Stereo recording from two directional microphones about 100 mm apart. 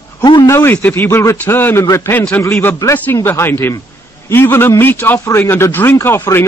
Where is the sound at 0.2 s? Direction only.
45° left (ahead or behind).